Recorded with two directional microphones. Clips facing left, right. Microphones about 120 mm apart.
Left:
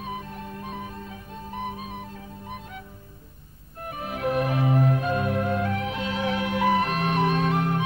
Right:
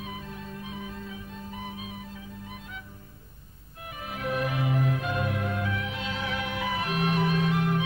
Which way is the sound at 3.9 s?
45° left (ahead or behind).